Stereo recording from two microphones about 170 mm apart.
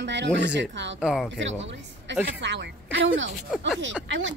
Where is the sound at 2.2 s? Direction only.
90° right.